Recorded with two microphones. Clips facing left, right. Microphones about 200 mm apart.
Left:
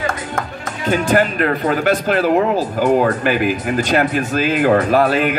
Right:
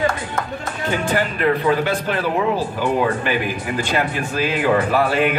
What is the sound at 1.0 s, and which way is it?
Speech, 45° left (ahead or behind).